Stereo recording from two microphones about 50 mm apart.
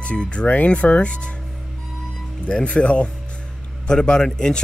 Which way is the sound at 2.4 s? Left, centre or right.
Left.